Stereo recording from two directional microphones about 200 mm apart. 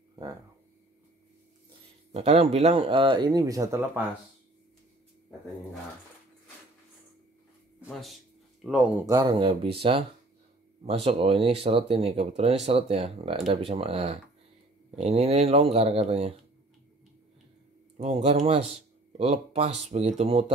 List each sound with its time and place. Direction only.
2.1 s speech: 30° right (ahead or behind); by 4.0 s 15° right (ahead or behind)
7.8 s speech: centre (ahead or behind)
9.0 s speech: 20° right (ahead or behind)
17.9 s speech: 35° right (ahead or behind)